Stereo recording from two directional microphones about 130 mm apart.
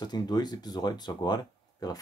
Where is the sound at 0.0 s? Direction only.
35° left (ahead or behind).